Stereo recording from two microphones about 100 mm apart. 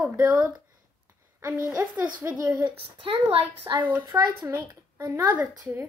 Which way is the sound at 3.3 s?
80° right.